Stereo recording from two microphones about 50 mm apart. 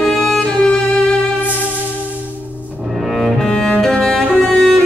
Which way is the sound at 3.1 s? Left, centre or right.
Centre.